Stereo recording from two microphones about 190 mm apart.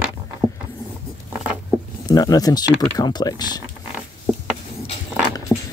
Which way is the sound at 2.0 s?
20° left (ahead or behind).